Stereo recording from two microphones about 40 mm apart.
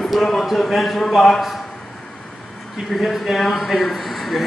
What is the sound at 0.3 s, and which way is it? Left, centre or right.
A man's voice, centre.